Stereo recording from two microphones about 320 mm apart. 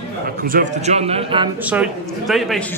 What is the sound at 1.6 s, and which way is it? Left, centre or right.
A man's voice, centre.